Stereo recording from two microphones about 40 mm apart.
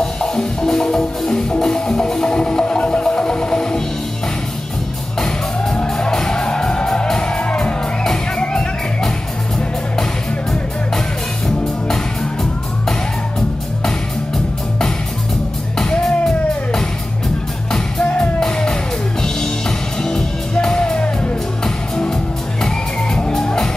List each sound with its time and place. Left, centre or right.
0.0 s music: centre
5.9 s music: centre
13.8 s music: centre
15.9 s music: centre
18.0 s music: left
18.4 s music: centre
20.0 s music: centre
23.3 s music: centre